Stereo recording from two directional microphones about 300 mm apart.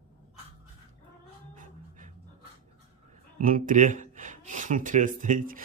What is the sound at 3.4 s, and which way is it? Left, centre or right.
Speech, right.